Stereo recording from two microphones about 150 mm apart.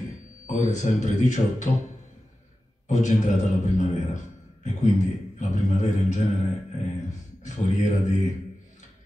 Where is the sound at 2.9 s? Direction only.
50° left (ahead or behind).